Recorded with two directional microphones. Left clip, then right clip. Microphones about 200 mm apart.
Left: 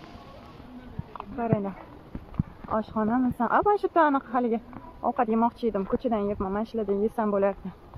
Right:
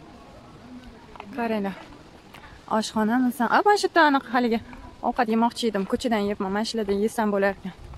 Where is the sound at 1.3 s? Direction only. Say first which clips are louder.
Right 1 dB; 30° right (ahead or behind).